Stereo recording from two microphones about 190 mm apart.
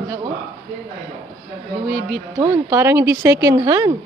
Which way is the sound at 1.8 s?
5° right (ahead or behind).